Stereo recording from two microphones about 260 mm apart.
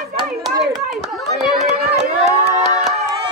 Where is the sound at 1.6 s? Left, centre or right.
Right.